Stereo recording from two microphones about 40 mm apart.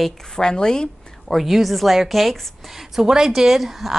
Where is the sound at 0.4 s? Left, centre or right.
Centre.